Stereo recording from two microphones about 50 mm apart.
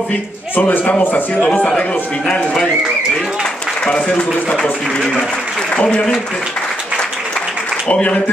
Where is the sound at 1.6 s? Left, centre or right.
Left.